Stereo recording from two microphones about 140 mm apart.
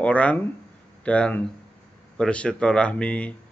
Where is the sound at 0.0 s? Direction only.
10° left (ahead or behind).